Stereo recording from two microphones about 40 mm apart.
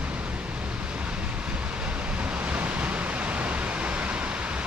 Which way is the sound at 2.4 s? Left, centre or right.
Right.